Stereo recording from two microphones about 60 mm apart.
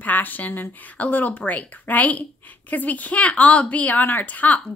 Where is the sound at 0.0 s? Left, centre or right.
Left.